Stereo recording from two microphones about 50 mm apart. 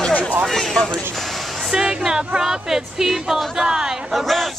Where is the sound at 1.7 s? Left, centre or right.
Centre.